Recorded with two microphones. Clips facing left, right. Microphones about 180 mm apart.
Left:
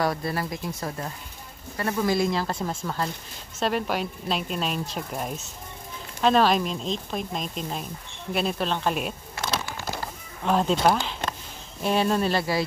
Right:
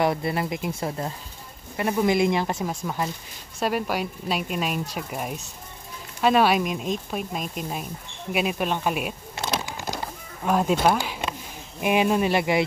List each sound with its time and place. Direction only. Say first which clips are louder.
0.0 s speech: right 3 dB; 20° right (ahead or behind)
2.5 s speech: right 1 dB; 5° right (ahead or behind)
9.3 s a sound: right 1 dB; 20° right (ahead or behind)
11.8 s speech: right 2 dB; 15° right (ahead or behind)